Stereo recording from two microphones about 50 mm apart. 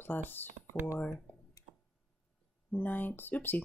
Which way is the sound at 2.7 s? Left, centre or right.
Left.